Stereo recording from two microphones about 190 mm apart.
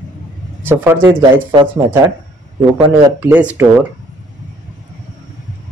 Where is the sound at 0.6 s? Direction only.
10° right (ahead or behind).